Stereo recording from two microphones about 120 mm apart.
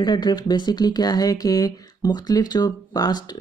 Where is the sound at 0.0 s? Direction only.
35° left (ahead or behind).